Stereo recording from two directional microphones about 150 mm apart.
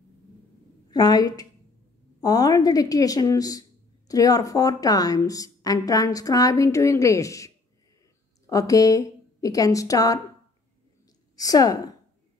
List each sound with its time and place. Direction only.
0.8 s a woman's voice: 25° left (ahead or behind)
11.3 s speech: 25° left (ahead or behind)